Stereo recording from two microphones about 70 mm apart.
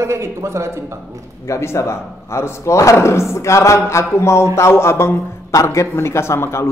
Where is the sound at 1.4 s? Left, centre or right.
Left.